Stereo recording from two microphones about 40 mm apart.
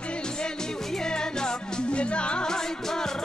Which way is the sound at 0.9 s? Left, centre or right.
Centre.